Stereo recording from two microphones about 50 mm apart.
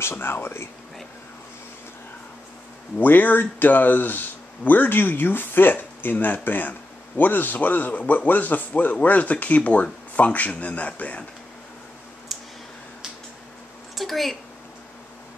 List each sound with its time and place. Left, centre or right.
0.0 s speech: left
3.0 s a man's voice: left
12.3 s clicking: centre
13.9 s a sound: centre